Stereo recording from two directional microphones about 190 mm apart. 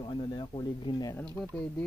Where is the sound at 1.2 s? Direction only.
5° left (ahead or behind).